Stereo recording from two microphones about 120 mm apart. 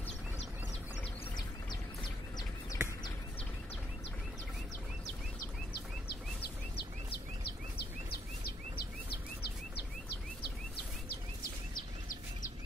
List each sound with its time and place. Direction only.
1.3 s bird: 35° left (ahead or behind)